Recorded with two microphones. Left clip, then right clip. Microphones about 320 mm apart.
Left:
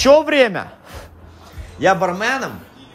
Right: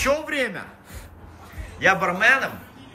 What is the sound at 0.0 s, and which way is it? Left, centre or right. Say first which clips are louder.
Speech: left 11 dB; centre.